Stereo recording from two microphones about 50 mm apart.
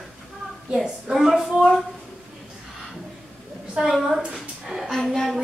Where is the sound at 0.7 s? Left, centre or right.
Centre.